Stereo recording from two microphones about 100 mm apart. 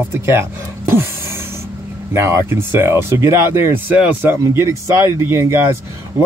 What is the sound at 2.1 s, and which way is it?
Speech, 25° right (ahead or behind).